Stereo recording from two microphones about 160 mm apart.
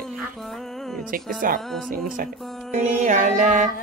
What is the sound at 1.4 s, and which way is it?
Music, 60° right (ahead or behind).